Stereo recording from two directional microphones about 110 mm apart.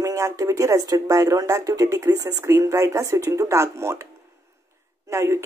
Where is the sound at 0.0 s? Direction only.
30° right (ahead or behind).